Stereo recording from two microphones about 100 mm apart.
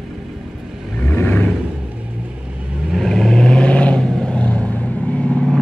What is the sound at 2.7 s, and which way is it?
Vehicle, 5° right (ahead or behind).